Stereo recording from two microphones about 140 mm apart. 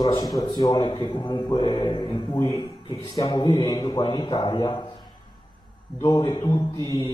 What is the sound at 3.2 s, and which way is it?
A man's voice, 35° left (ahead or behind).